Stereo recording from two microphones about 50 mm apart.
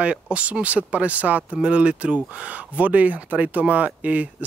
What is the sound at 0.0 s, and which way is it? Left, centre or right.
Speech, right.